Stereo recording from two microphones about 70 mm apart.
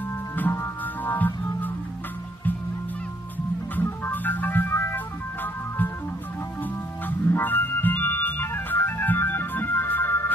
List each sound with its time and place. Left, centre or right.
0.5 s music: left
3.7 s music: left
7.1 s organ: left